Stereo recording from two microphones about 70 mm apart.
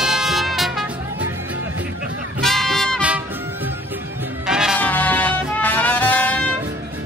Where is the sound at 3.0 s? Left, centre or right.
Centre.